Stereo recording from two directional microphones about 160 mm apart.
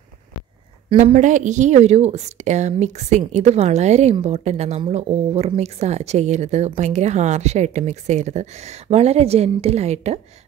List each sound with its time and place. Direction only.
0.9 s a woman's voice: 45° right (ahead or behind)